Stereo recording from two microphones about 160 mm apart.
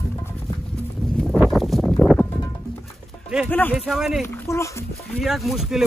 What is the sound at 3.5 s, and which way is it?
Speech, 10° left (ahead or behind).